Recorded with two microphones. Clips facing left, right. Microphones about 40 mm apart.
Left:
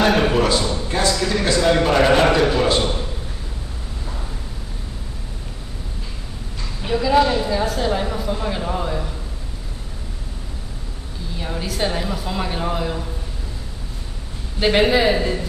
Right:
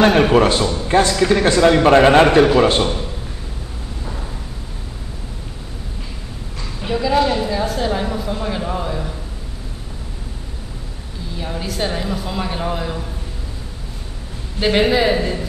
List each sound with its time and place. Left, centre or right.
0.0 s a man's voice: right
0.3 s a man's voice: right
6.8 s speech: centre
11.3 s speech: centre
14.6 s speech: centre